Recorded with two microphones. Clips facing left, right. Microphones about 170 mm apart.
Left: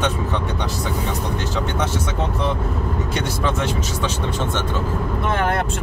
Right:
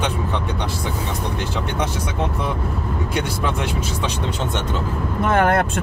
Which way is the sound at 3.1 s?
10° right (ahead or behind).